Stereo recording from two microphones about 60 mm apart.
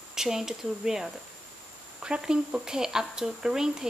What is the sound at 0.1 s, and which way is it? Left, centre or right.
Speech, centre.